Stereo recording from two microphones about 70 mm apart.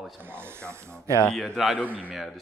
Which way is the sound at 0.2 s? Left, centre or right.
Right.